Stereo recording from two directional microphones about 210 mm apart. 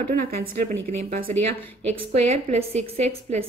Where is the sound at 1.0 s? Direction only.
45° right (ahead or behind).